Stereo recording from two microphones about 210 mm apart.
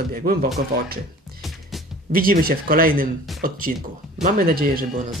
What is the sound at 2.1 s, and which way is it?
Speech, 45° right (ahead or behind).